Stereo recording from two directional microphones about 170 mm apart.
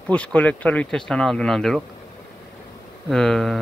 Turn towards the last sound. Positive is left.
turn(degrees=5)  # may be behind; listen again after turning